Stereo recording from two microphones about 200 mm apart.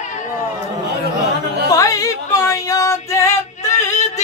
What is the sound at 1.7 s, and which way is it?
Female singing, 15° left (ahead or behind).